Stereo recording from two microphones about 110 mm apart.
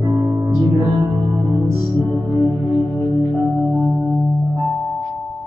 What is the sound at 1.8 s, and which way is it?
Music, centre (ahead or behind).